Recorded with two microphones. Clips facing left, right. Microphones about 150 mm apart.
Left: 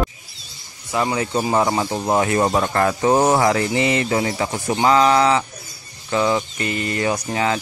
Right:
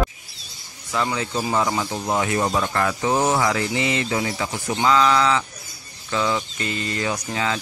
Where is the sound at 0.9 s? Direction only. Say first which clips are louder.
Left 4 dB; 30° left (ahead or behind).